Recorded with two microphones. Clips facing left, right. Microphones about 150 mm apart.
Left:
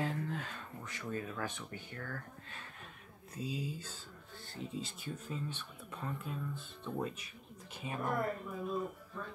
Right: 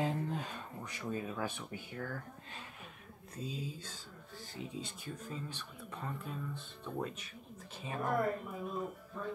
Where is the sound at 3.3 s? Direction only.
5° left (ahead or behind).